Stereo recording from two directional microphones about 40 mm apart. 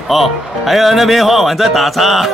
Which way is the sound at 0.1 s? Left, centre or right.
Centre.